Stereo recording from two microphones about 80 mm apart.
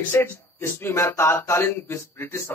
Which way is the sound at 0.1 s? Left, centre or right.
Left.